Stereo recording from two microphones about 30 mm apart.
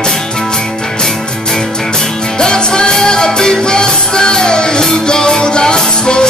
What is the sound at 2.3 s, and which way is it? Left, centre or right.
Music, left.